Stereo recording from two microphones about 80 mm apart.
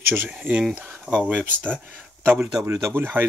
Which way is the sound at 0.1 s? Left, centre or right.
Right.